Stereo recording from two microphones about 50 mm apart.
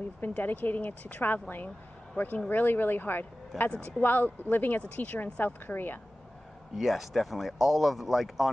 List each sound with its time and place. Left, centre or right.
0.2 s speech: left
6.7 s speech: centre